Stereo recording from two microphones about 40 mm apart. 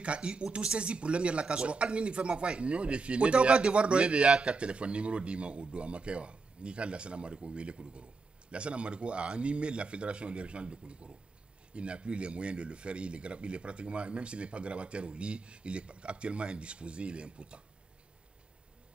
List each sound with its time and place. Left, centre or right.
0.0 s speech: right